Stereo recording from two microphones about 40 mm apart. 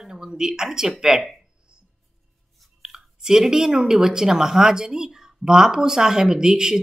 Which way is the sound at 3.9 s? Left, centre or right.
Centre.